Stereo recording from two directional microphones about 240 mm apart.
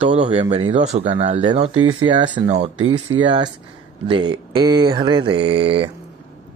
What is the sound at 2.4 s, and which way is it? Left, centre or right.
Speech, right.